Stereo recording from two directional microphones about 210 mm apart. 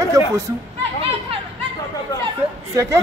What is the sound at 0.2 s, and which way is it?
Speech, 15° right (ahead or behind).